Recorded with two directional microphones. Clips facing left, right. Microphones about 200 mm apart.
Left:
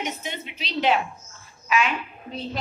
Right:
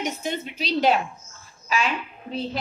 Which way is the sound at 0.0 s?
40° right (ahead or behind).